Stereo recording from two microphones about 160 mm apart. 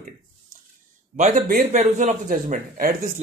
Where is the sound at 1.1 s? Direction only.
50° right (ahead or behind).